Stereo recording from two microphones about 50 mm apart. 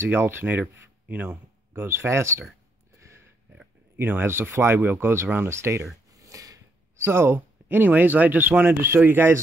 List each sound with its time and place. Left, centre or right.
0.0 s speech: right
1.0 s speech: right
1.7 s speech: right
3.9 s speech: right
6.3 s a sound: right
7.0 s speech: right